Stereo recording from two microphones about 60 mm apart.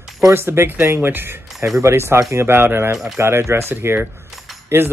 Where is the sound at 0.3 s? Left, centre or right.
Right.